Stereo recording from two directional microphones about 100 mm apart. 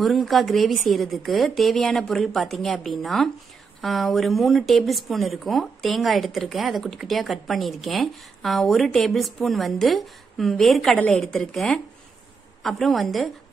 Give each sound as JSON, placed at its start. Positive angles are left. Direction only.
{"t": 0.0, "sound": "speech", "side_deg": 0}